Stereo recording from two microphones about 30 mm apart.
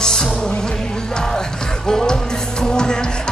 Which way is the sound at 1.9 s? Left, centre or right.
Left.